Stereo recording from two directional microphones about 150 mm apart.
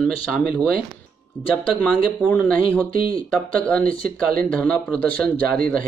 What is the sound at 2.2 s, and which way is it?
Speech, 10° left (ahead or behind).